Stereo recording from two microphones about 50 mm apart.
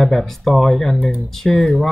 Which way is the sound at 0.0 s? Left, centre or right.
Centre.